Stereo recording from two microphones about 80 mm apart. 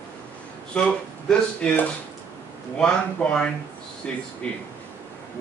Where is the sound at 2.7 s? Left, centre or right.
Centre.